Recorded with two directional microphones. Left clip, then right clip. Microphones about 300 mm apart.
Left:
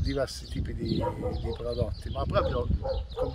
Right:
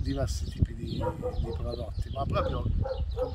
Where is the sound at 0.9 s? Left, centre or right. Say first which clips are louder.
Even; left.